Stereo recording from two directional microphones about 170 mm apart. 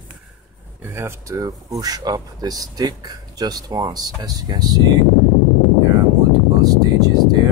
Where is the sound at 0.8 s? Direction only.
15° right (ahead or behind).